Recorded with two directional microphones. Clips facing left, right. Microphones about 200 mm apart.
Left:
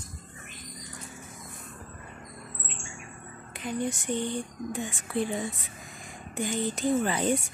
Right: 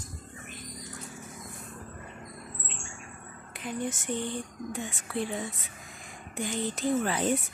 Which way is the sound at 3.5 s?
Centre (ahead or behind).